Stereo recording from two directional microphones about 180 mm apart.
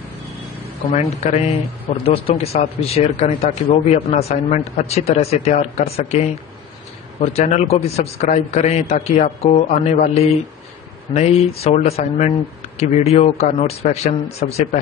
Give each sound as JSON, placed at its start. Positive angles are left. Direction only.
{"t": 0.9, "sound": "a man's voice", "side_deg": 35}